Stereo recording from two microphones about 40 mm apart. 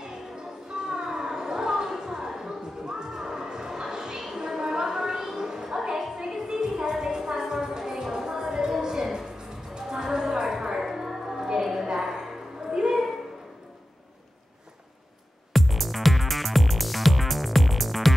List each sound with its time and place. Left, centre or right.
0.0 s music: centre
4.4 s a sound: centre
15.5 s music: centre